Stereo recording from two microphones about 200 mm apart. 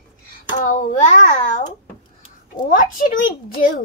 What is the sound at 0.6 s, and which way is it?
Speech, 40° left (ahead or behind).